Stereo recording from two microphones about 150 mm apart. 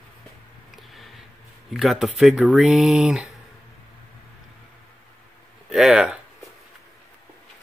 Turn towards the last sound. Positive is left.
turn(degrees=-5)  # may be behind; listen again after turning